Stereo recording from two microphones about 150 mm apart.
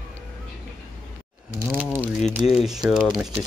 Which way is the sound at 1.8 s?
10° left (ahead or behind).